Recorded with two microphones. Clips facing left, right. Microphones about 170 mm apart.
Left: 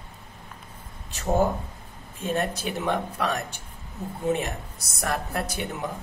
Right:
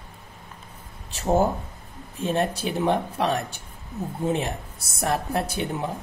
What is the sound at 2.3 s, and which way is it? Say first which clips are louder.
Speech: right 2 dB; 30° right (ahead or behind).